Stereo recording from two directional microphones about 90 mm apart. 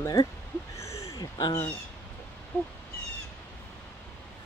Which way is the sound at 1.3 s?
50° left (ahead or behind).